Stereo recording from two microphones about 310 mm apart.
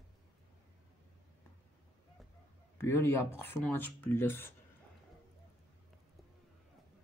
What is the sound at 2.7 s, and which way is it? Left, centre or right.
Speech, centre.